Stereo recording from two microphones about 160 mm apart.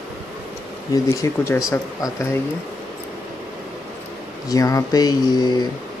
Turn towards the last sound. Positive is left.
turn(degrees=25)  # may be behind; listen again after turning